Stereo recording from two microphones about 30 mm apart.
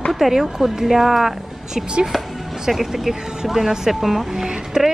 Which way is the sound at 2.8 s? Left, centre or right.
Centre.